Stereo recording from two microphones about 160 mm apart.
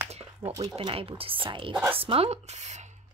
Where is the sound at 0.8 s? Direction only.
35° right (ahead or behind).